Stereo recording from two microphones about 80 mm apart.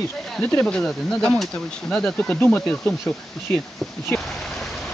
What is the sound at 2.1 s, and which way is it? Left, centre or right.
Speech, centre.